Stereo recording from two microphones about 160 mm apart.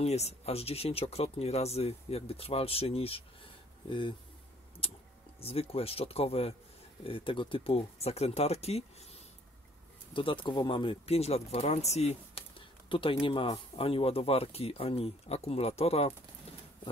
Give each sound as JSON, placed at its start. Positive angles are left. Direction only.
{"t": 0.0, "sound": "speech", "side_deg": 40}
{"t": 5.4, "sound": "speech", "side_deg": 40}
{"t": 10.1, "sound": "speech", "side_deg": 30}